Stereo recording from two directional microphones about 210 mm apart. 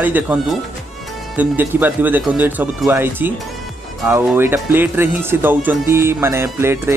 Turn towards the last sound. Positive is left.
turn(degrees=-10)  # may be behind; listen again after turning